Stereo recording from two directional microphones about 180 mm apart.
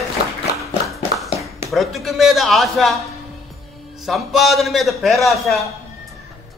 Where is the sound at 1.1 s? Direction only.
Centre (ahead or behind).